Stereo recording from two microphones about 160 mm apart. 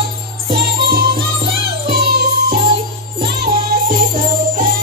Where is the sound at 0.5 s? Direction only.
75° right (ahead or behind).